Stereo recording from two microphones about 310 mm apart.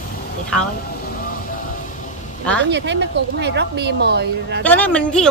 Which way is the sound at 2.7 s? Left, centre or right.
Right.